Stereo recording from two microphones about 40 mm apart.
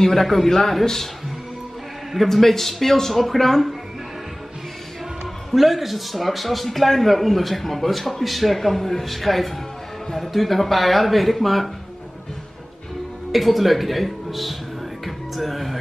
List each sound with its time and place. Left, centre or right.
0.0 s speech: centre
2.2 s speech: centre
5.5 s a man's voice: centre
13.3 s a man's voice: centre
15.0 s music: centre